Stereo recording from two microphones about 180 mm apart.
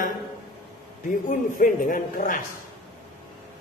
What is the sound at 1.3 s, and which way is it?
A man's voice, 50° left (ahead or behind).